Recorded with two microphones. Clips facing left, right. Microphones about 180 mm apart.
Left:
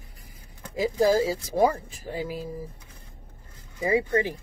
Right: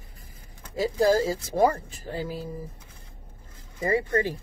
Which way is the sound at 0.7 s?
15° left (ahead or behind).